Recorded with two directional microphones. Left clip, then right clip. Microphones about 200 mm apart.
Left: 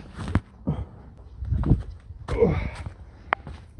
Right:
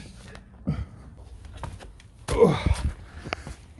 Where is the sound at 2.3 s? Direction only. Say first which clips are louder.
Right 3 dB; 15° right (ahead or behind).